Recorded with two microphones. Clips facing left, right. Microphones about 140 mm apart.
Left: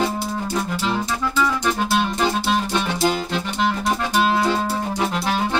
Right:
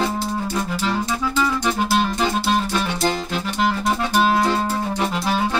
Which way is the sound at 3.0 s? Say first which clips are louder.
Left 1 dB; 10° left (ahead or behind).